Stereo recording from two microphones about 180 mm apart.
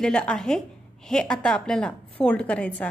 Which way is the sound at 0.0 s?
5° left (ahead or behind).